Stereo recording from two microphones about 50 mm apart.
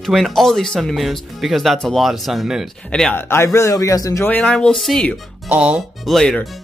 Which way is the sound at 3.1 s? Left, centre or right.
Left.